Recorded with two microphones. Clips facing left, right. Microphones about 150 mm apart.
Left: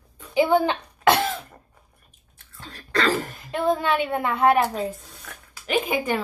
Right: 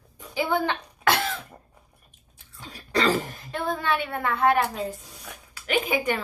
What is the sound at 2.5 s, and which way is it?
Throat clearing, 10° right (ahead or behind).